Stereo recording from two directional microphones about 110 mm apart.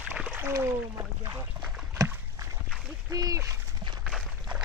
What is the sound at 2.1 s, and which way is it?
Dog, 30° right (ahead or behind).